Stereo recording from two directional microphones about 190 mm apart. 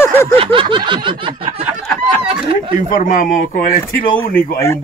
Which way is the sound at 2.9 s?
45° left (ahead or behind).